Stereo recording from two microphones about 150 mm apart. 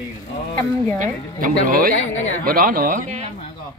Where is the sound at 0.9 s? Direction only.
65° right (ahead or behind).